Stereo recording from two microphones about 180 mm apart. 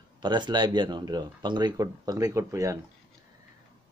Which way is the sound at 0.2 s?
25° right (ahead or behind).